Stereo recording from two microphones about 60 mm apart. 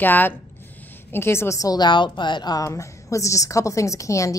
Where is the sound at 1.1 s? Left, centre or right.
Left.